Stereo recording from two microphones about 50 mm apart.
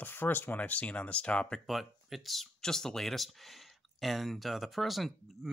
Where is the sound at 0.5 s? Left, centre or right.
Left.